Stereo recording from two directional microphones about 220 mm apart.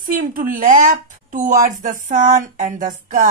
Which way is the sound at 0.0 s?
35° right (ahead or behind).